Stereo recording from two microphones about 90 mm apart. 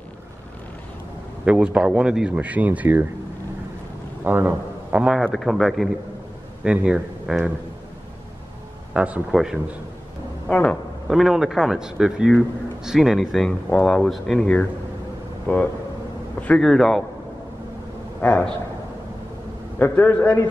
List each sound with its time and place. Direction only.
1.4 s speech: 10° right (ahead or behind)
4.2 s a man's voice: 20° right (ahead or behind)
5.2 s speech: centre (ahead or behind)
6.6 s speech: 10° right (ahead or behind)
8.9 s a man's voice: 15° right (ahead or behind)
9.3 s speech: 5° right (ahead or behind)
10.5 s speech: 15° left (ahead or behind)
11.1 s speech: 5° right (ahead or behind)
13.5 s a man's voice: 15° left (ahead or behind)
16.6 s speech: 5° left (ahead or behind)
18.2 s speech: 10° left (ahead or behind)
19.8 s a man's voice: 20° left (ahead or behind)